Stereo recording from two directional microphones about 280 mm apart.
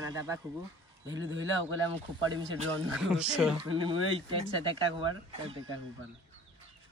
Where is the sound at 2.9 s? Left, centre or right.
Centre.